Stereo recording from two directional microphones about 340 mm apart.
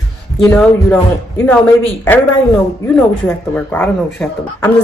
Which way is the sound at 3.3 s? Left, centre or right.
Centre.